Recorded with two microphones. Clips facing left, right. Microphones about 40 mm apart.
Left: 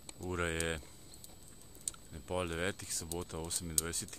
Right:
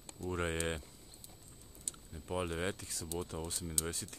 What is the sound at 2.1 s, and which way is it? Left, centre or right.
Speech, centre.